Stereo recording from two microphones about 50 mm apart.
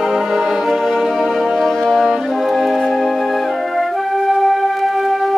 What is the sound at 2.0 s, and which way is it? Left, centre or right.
Music, centre.